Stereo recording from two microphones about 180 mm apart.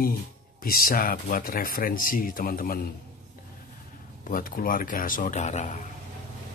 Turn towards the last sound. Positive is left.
turn(degrees=40)  # may be behind; listen again after turning